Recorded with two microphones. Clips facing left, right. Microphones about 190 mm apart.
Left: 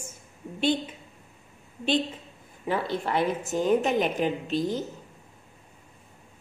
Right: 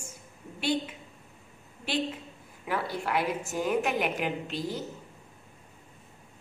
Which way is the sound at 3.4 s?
20° left (ahead or behind).